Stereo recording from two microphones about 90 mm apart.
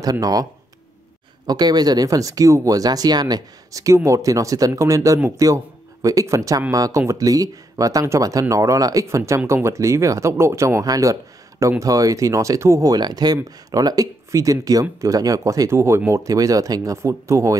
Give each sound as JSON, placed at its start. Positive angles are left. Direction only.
{"t": 0.0, "sound": "speech", "side_deg": -45}
{"t": 1.5, "sound": "speech", "side_deg": -45}
{"t": 16.1, "sound": "speech", "side_deg": -40}